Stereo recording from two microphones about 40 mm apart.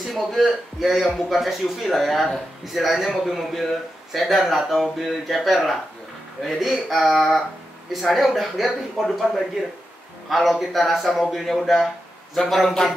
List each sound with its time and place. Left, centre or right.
0.0 s a man's voice: centre
10.3 s a man's voice: centre